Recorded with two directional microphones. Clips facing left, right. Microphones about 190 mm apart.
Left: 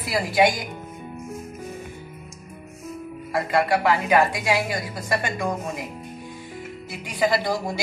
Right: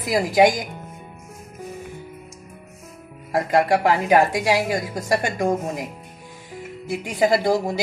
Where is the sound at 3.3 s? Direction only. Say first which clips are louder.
Right 3 dB; 40° right (ahead or behind).